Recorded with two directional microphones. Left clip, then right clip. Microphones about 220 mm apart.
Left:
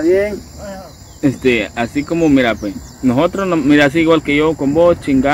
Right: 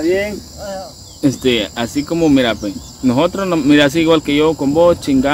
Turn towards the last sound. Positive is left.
turn(degrees=-10)  # may be behind; listen again after turning